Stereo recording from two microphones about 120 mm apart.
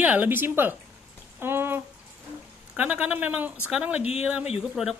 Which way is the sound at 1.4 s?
20° right (ahead or behind).